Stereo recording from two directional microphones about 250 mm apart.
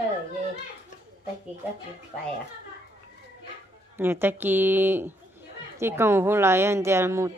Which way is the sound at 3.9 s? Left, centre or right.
Centre.